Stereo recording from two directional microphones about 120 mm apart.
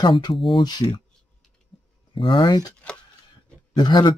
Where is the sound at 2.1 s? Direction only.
45° left (ahead or behind).